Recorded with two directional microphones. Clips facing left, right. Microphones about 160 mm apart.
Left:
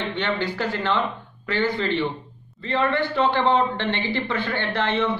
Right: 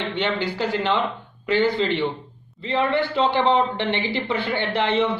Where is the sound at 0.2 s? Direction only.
20° right (ahead or behind).